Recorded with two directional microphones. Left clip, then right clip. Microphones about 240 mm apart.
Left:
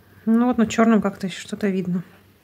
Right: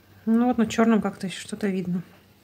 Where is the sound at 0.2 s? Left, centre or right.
Centre.